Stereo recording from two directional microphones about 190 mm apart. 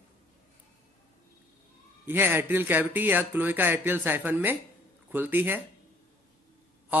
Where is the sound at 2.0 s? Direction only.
10° right (ahead or behind).